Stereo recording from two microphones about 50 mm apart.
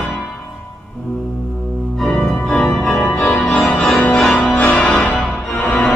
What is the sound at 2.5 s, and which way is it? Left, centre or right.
Organ, centre.